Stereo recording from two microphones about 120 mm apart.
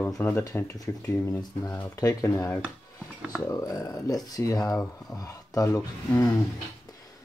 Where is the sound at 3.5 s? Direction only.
30° left (ahead or behind).